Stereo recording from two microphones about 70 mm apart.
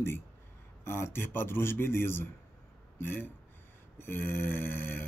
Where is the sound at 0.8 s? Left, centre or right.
Left.